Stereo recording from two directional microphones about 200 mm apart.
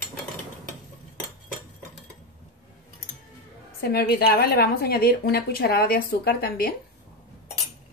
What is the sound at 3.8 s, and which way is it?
A woman's voice, 50° left (ahead or behind).